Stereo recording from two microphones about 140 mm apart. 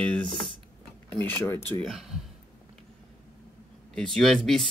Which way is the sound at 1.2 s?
15° left (ahead or behind).